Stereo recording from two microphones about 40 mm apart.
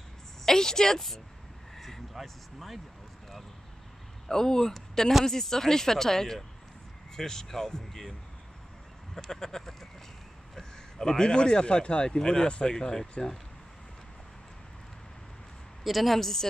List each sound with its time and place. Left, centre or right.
0.5 s speech: centre
1.8 s vehicle: centre
2.2 s a sound: centre
4.3 s speech: centre
9.1 s speech: centre
15.8 s a woman's voice: centre